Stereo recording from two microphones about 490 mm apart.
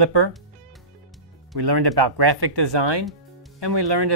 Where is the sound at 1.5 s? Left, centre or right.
Right.